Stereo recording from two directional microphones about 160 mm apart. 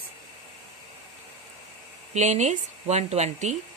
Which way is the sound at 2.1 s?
45° right (ahead or behind).